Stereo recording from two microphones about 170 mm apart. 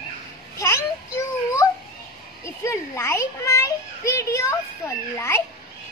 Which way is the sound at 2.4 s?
15° left (ahead or behind).